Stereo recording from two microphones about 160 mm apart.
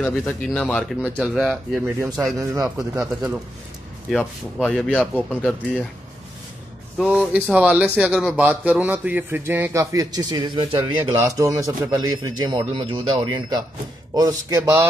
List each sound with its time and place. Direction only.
0.1 s speech: 5° left (ahead or behind)
1.2 s speech: 5° right (ahead or behind)
2.2 s speech: 20° right (ahead or behind)
4.1 s speech: centre (ahead or behind)
7.0 s speech: 5° right (ahead or behind)